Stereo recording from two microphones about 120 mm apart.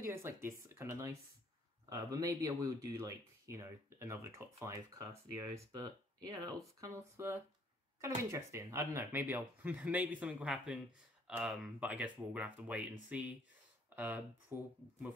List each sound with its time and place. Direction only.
0.0 s speech: 20° right (ahead or behind)